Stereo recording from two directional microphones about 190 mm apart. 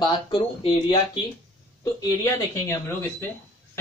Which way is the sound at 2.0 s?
15° left (ahead or behind).